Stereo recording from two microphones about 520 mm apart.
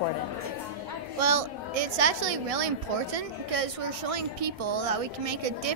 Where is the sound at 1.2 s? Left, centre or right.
Right.